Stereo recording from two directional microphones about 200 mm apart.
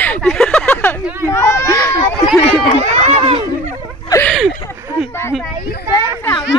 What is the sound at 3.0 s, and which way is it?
Chatter, 25° right (ahead or behind).